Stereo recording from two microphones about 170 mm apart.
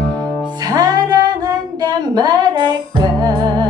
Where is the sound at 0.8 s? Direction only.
20° right (ahead or behind).